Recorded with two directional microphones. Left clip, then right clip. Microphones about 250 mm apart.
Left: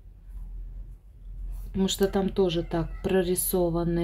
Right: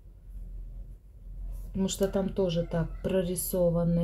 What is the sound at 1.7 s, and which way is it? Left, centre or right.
Speech, left.